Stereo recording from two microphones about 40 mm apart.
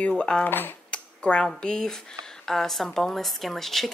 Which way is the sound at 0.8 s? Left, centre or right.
Left.